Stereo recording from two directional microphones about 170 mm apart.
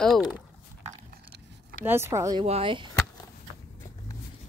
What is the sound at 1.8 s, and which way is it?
Speech, 15° right (ahead or behind).